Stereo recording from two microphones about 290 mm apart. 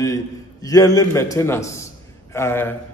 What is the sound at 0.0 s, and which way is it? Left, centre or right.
A man's voice, centre.